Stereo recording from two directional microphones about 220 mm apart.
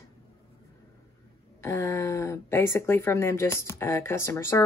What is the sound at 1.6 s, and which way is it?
Speech, 15° left (ahead or behind).